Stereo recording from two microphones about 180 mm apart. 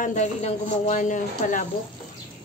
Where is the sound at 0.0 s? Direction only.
40° left (ahead or behind).